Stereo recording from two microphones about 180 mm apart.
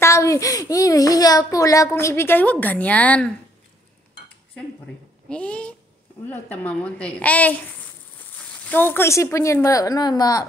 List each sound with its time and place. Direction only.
0.0 s a child's voice: 15° left (ahead or behind)
5.3 s speech: 5° left (ahead or behind)
8.6 s speech: 10° left (ahead or behind)